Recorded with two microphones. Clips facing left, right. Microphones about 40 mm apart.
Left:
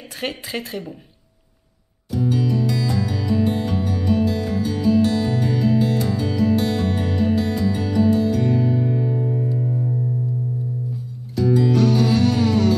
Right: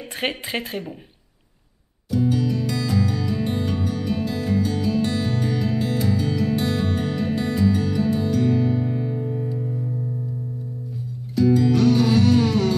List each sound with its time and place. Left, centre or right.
0.1 s a woman's voice: right
2.0 s music: centre
11.3 s music: centre